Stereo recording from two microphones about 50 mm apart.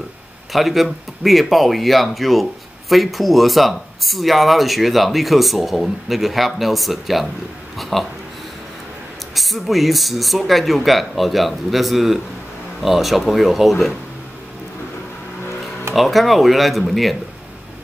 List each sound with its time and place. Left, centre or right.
0.5 s speech: centre
9.3 s speech: centre
15.9 s speech: centre